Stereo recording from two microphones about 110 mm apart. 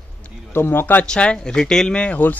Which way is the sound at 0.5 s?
20° left (ahead or behind).